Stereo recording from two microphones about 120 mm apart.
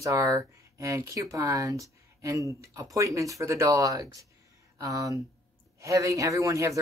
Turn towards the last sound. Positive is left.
turn(degrees=-25)  # may be behind; listen again after turning